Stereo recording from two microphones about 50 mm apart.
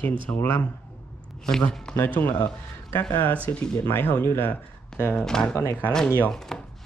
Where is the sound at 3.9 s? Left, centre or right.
Left.